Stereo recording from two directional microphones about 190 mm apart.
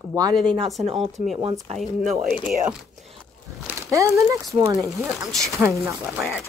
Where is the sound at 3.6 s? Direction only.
15° right (ahead or behind).